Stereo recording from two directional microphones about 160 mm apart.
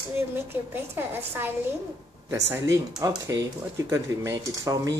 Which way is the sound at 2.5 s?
20° right (ahead or behind).